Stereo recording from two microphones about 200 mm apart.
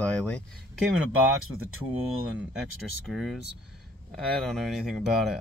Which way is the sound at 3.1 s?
Centre (ahead or behind).